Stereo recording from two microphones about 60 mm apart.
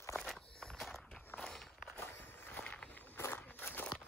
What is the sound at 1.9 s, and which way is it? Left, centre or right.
Walk, left.